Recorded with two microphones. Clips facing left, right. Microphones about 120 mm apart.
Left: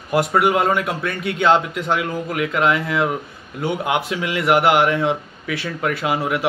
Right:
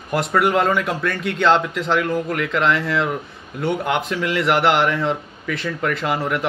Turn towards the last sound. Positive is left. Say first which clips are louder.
# left 1 dB
turn(degrees=5)  # may be behind; listen again after turning